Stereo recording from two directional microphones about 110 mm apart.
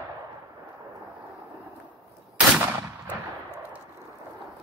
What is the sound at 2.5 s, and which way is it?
Gunshot, 15° right (ahead or behind).